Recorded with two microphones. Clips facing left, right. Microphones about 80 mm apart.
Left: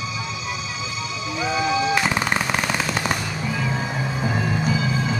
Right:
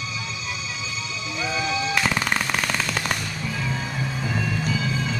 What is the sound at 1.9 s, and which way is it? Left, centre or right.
Machine gun, centre.